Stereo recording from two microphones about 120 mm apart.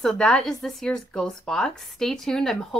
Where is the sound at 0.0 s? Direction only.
5° left (ahead or behind).